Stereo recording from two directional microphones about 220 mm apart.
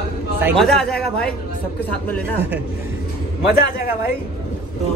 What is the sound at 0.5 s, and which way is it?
Speech, 5° left (ahead or behind).